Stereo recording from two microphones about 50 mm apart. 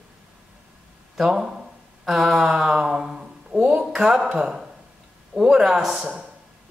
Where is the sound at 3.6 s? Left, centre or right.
Right.